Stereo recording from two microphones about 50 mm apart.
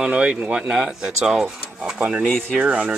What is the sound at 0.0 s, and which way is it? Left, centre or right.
Speech, right.